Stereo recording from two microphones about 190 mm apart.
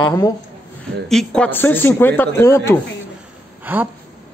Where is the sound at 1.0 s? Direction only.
5° left (ahead or behind).